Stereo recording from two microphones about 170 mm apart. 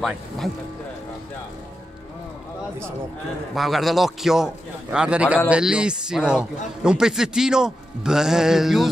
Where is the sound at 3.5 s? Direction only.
Centre (ahead or behind).